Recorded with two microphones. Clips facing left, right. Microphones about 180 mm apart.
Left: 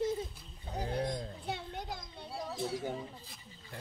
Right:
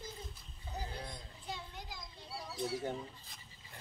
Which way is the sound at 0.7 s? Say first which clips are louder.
Left 10 dB; 70° left (ahead or behind).